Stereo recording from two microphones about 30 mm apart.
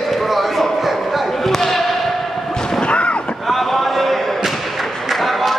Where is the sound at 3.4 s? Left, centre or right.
Centre.